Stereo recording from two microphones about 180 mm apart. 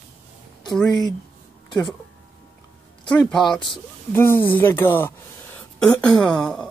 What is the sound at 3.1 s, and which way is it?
Speech, 5° left (ahead or behind).